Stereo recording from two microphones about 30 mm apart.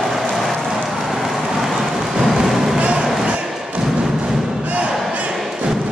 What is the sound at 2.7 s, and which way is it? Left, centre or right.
Music, right.